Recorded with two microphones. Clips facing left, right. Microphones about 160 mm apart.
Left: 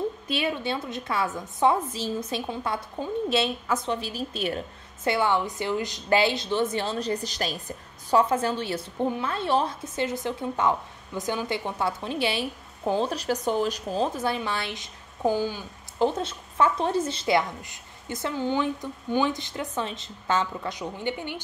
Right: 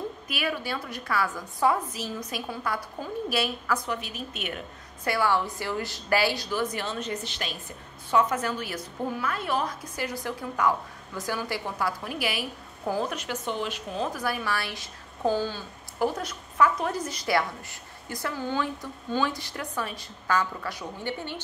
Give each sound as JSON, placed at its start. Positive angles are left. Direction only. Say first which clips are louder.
{"t": 0.3, "sound": "a woman's voice", "louder": "left 1 dB", "side_deg": 25}